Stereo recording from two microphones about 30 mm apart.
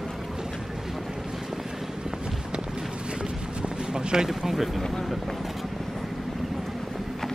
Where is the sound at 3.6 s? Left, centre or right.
Right.